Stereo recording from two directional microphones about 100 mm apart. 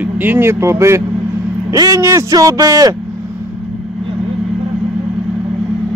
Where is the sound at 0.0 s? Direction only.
20° right (ahead or behind); by 2.9 s 35° right (ahead or behind).